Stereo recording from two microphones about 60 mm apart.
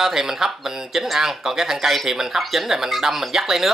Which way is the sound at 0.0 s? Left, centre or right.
Centre.